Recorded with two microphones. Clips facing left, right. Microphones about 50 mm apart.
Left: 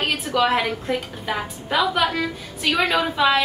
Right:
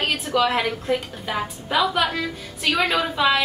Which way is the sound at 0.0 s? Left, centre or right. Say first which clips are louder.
Even; centre.